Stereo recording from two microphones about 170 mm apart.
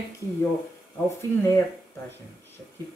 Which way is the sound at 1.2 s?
15° left (ahead or behind).